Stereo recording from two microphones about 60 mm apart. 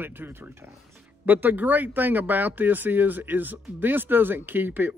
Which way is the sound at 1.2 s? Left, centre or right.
Right.